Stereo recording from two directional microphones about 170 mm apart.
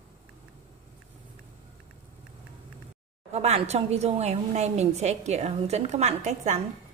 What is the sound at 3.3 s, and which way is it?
A woman's voice, 40° right (ahead or behind).